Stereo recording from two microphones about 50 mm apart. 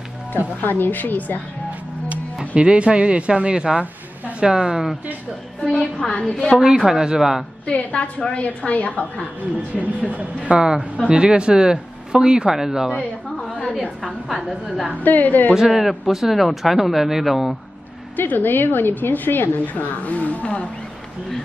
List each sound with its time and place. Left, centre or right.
0.6 s a woman's voice: left
2.5 s speech: right
5.9 s a woman's voice: centre
6.9 s speech: centre
7.6 s a woman's voice: left
9.8 s speech: right
10.6 s speech: centre
12.9 s a sound: centre
15.0 s a woman's voice: left
15.5 s speech: centre
18.1 s a woman's voice: left
19.6 s a woman's voice: left